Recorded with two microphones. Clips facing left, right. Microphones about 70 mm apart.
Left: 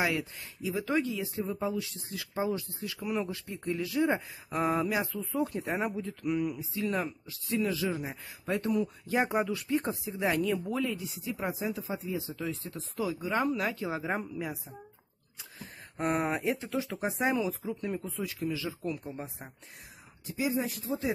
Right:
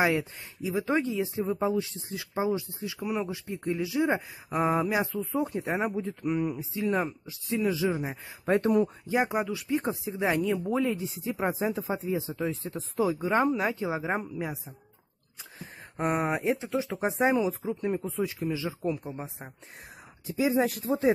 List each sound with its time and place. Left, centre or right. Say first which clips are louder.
0.0 s speech: right 5 dB; right
8.5 s speech: right 6 dB; right
9.0 s speech: right 1 dB; centre
10.0 s speech: right 2 dB; right
15.6 s speech: right 2 dB; centre
20.5 s speech: right 7 dB; right